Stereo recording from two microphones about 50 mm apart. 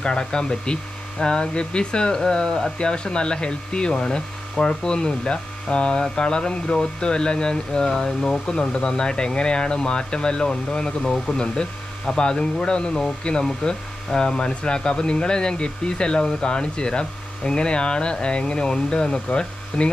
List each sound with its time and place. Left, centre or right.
0.0 s speech: centre